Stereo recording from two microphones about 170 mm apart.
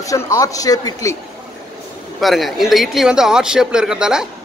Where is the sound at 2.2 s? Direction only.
Centre (ahead or behind).